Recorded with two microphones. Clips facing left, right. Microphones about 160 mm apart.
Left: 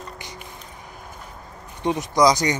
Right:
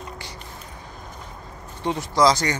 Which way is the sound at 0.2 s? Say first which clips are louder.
Even; 20° left (ahead or behind).